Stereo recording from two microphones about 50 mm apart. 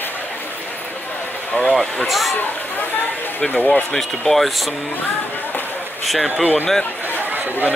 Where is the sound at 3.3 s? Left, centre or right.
Left.